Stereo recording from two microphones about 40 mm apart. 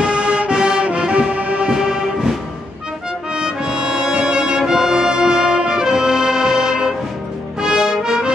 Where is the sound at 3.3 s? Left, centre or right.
Centre.